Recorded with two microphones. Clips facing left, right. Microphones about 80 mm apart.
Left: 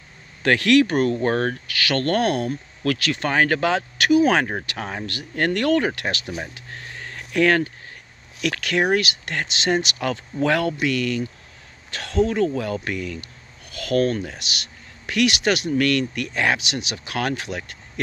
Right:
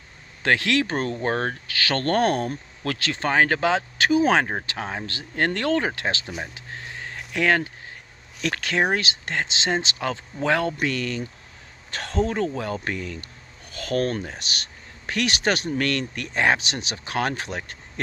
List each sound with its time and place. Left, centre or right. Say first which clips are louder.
0.4 s speech: left 5 dB; right
6.4 s a sound: even; right
8.4 s speech: left 2 dB; right
10.8 s speech: left 4 dB; right